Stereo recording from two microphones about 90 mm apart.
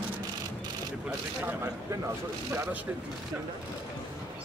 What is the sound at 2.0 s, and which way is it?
Speech, 35° right (ahead or behind).